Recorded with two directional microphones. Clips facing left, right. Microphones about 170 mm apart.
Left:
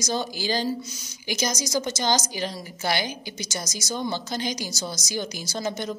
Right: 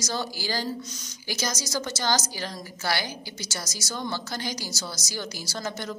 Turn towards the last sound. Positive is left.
turn(degrees=15)  # may be behind; listen again after turning